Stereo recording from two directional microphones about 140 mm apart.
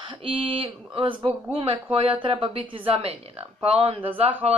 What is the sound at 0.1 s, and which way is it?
Speech, 40° right (ahead or behind).